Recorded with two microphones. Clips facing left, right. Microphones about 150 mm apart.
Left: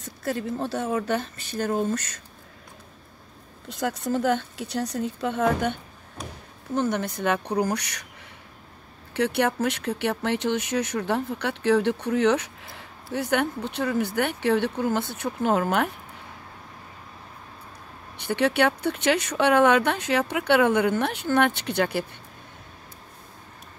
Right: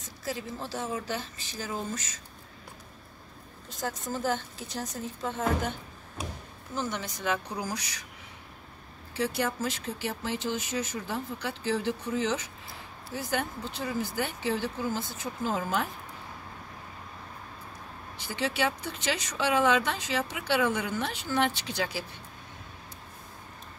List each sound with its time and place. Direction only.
0.0 s speech: 60° left (ahead or behind)
3.6 s speech: 65° left (ahead or behind)
9.1 s speech: 65° left (ahead or behind)
18.2 s speech: 65° left (ahead or behind)